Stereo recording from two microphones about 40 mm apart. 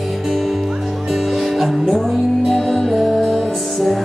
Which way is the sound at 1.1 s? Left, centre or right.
Centre.